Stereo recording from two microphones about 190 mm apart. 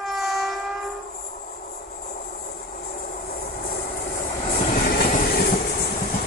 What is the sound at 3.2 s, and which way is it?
Vehicle, 50° left (ahead or behind).